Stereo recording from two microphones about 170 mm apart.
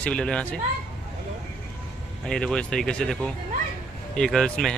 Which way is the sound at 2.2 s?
5° left (ahead or behind).